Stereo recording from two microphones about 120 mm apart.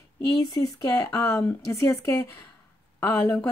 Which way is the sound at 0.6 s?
30° left (ahead or behind).